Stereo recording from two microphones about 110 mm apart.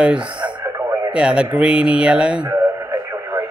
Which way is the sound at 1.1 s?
10° right (ahead or behind).